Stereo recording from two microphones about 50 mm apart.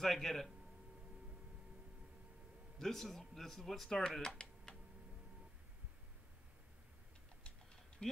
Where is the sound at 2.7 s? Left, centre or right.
Centre.